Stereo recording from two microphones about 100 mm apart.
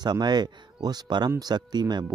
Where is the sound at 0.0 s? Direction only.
45° right (ahead or behind).